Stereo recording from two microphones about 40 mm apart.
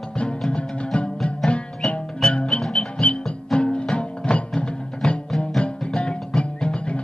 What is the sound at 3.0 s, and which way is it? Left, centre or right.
Music, left.